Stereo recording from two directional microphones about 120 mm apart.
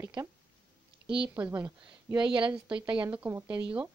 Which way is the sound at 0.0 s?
20° right (ahead or behind).